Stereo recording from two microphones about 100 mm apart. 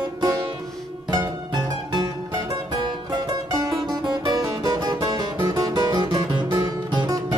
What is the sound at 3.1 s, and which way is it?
Music, 45° right (ahead or behind).